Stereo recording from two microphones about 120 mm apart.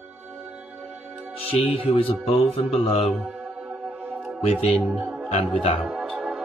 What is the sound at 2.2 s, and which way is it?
Mantra, 55° left (ahead or behind).